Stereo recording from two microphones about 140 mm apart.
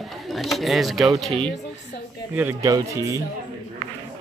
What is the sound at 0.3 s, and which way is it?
Speech, centre (ahead or behind).